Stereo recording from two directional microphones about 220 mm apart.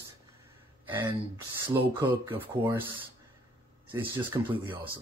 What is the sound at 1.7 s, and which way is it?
Speech, 15° right (ahead or behind).